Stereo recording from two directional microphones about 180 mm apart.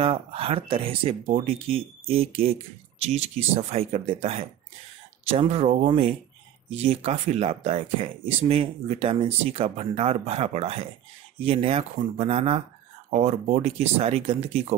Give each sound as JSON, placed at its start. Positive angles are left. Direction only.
{"t": 0.0, "sound": "speech", "side_deg": -30}